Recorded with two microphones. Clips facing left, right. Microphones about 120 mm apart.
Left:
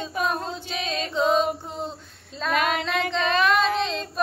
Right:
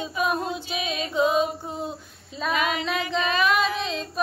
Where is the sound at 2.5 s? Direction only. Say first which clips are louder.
Left 3 dB; 50° left (ahead or behind).